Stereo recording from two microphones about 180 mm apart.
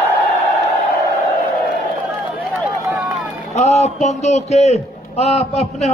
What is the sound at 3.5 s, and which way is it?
A man's voice, 35° left (ahead or behind).